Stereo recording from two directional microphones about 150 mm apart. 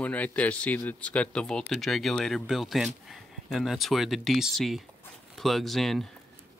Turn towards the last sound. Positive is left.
turn(degrees=0)  # may be behind; listen again after turning